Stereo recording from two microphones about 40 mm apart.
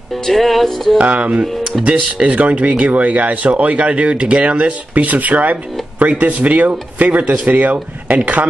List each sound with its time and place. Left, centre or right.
0.2 s music: centre
0.9 s speech: right